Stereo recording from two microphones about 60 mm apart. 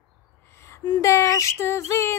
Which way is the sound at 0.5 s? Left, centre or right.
Left.